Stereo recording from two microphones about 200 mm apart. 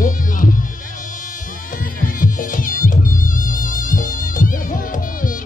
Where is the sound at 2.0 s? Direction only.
45° left (ahead or behind).